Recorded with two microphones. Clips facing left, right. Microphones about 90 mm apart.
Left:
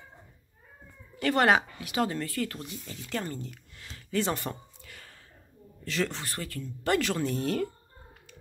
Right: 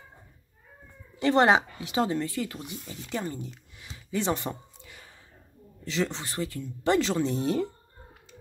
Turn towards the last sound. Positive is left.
turn(degrees=-20)  # may be behind; listen again after turning